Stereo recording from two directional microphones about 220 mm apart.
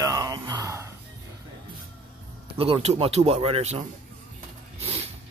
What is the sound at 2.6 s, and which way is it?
Speech, 25° right (ahead or behind).